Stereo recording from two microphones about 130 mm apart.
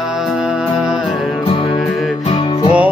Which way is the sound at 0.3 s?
5° right (ahead or behind).